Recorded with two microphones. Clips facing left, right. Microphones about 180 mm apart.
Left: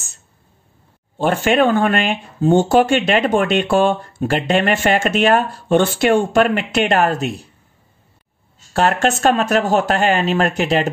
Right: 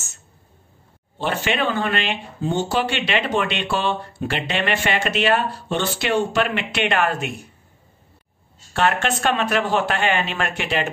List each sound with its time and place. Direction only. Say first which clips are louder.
1.1 s speech: left 8 dB; 45° left (ahead or behind)
8.7 s speech: left 4 dB; 40° left (ahead or behind)